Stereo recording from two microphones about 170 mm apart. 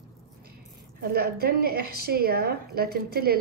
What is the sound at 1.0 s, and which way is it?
A woman's voice, 65° right (ahead or behind).